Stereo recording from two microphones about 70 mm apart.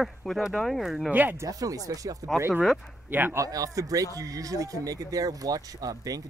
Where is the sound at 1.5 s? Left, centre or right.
Right.